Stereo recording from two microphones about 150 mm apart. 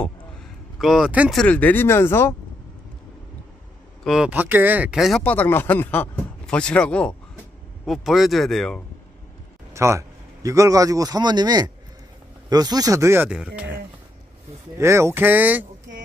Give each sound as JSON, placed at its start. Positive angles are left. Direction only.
{"t": 0.7, "sound": "speech", "side_deg": 0}
{"t": 1.3, "sound": "speech", "side_deg": 5}
{"t": 4.0, "sound": "speech", "side_deg": -5}
{"t": 5.2, "sound": "speech", "side_deg": 10}
{"t": 9.8, "sound": "a man's voice", "side_deg": -20}
{"t": 14.8, "sound": "speech", "side_deg": -20}